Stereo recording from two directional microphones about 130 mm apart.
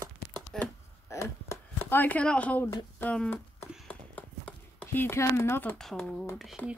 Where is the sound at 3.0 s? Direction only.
10° left (ahead or behind).